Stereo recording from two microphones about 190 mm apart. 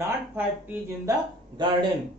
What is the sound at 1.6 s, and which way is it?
Speech, 25° right (ahead or behind).